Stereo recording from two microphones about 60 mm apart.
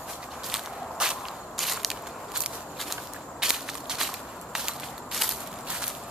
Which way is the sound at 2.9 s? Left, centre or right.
Centre.